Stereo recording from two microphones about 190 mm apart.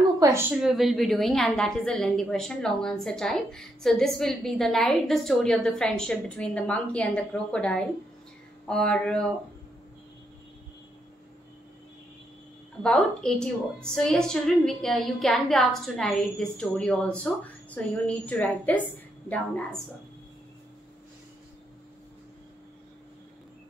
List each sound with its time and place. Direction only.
0.2 s a woman's voice: 15° right (ahead or behind); by 9.2 s 5° left (ahead or behind)
12.8 s a woman's voice: 5° left (ahead or behind)